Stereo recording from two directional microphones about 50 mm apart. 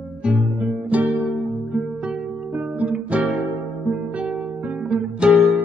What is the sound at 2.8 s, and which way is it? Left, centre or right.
Guitar, right.